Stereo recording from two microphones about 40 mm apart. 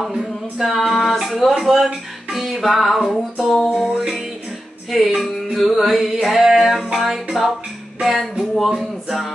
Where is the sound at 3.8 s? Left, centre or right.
Centre.